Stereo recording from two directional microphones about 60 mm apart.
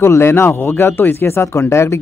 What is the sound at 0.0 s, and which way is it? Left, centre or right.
Speech, left.